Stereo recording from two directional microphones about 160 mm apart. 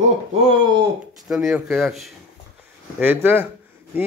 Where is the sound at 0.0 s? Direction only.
40° right (ahead or behind).